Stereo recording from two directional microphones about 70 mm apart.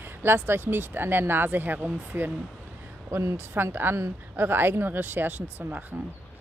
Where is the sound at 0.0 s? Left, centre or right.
Right.